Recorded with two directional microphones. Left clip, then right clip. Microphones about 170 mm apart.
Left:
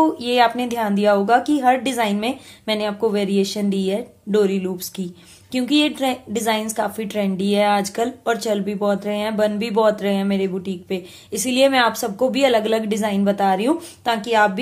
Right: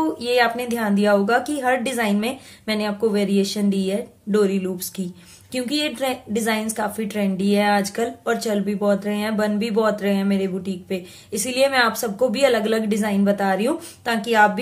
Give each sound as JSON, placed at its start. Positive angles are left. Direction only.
{"t": 0.0, "sound": "a woman's voice", "side_deg": 30}